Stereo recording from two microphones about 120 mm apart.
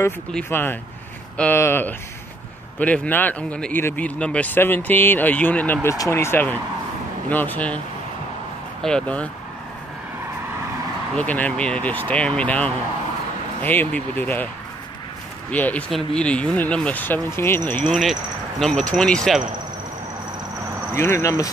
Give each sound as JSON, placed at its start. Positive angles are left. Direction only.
{"t": 0.5, "sound": "speech", "side_deg": 15}
{"t": 8.8, "sound": "speech", "side_deg": 10}
{"t": 11.1, "sound": "speech", "side_deg": 15}
{"t": 15.5, "sound": "speech", "side_deg": 15}
{"t": 20.9, "sound": "speech", "side_deg": 20}